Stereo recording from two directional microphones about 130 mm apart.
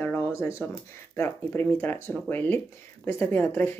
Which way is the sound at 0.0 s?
20° left (ahead or behind).